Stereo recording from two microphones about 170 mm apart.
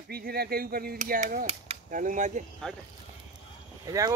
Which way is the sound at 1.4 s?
35° right (ahead or behind).